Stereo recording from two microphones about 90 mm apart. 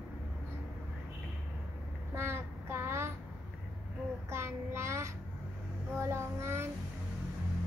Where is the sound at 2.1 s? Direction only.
25° right (ahead or behind).